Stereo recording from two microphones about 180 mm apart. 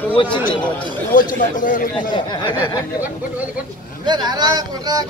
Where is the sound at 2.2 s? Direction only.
25° left (ahead or behind).